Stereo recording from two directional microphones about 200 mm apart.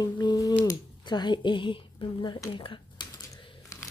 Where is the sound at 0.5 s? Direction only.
20° left (ahead or behind).